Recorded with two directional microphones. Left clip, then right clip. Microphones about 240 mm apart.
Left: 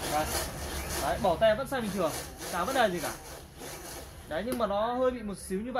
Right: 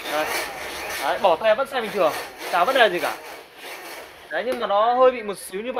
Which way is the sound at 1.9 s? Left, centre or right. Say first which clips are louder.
Right 10 dB; right.